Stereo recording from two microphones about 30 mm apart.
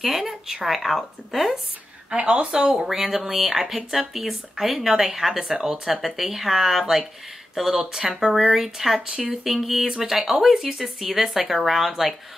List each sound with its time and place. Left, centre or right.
0.0 s speech: centre
2.0 s speech: right
2.9 s speech: centre